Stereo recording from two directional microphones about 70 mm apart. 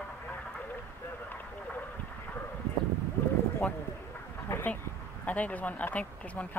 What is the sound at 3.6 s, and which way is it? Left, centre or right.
Speech, centre.